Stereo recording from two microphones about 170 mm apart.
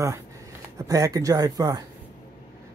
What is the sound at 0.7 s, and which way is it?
Speech, 20° right (ahead or behind).